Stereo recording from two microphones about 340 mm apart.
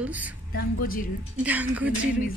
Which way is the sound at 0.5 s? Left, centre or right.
Left.